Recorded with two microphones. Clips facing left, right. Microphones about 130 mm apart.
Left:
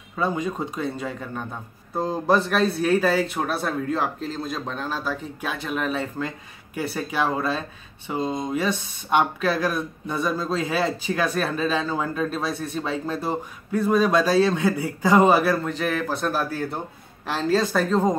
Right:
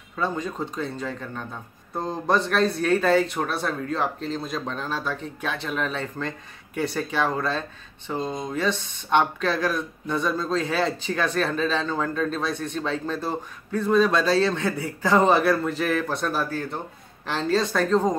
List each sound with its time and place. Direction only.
0.1 s speech: 10° left (ahead or behind)